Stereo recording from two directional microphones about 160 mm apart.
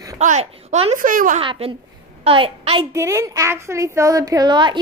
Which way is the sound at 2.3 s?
35° right (ahead or behind).